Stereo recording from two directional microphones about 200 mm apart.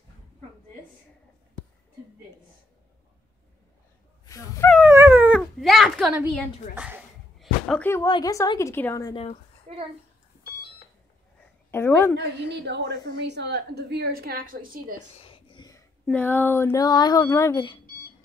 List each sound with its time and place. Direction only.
4.8 s cat: 10° right (ahead or behind)
6.7 s a sound: 5° right (ahead or behind); by 8.1 s 10° left (ahead or behind)
8.1 s speech: 20° left (ahead or behind)
9.1 s speech: 30° left (ahead or behind)
9.7 s a child's voice: 30° right (ahead or behind)
11.7 s speech: 10° left (ahead or behind)
12.2 s a woman's voice: 60° right (ahead or behind)
15.1 s a sound: 25° left (ahead or behind)
16.1 s speech: 10° left (ahead or behind)